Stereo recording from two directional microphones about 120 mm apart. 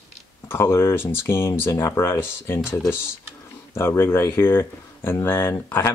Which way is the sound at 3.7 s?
20° left (ahead or behind).